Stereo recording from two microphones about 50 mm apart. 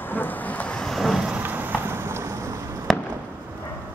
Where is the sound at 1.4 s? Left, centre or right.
Right.